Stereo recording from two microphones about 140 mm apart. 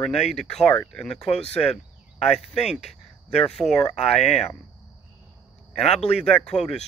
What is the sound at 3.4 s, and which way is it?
Speech, 5° left (ahead or behind).